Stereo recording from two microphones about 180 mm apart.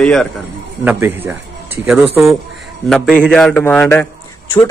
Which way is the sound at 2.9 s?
5° left (ahead or behind).